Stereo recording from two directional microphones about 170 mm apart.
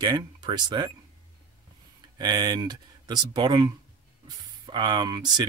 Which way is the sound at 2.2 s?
25° right (ahead or behind).